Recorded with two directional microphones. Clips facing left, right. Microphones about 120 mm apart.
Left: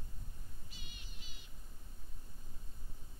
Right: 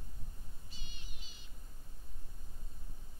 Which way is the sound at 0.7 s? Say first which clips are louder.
Even; 30° right (ahead or behind).